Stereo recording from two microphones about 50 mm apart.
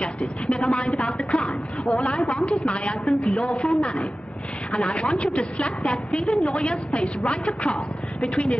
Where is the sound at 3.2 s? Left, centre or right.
Centre.